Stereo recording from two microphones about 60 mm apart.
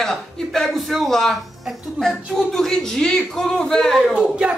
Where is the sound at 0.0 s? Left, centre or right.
Centre.